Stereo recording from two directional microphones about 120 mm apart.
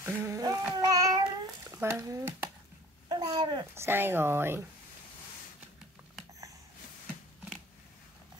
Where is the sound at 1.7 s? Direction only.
25° right (ahead or behind).